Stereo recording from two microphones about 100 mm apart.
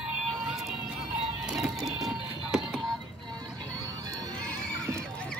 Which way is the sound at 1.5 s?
5° right (ahead or behind).